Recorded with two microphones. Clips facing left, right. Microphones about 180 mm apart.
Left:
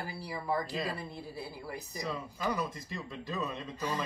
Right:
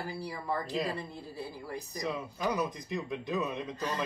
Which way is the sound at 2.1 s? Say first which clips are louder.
Right 1 dB; 15° right (ahead or behind).